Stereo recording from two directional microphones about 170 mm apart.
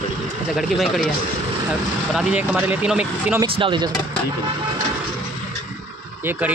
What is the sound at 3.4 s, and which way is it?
Speech, 30° right (ahead or behind).